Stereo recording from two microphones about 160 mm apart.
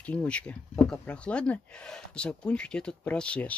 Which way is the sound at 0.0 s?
10° left (ahead or behind).